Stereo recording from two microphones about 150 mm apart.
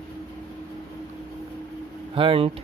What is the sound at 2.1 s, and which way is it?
Speech, 40° right (ahead or behind).